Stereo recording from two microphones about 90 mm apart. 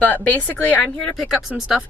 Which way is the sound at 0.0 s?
20° left (ahead or behind).